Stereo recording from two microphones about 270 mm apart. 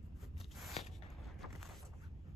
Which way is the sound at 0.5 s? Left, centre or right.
Centre.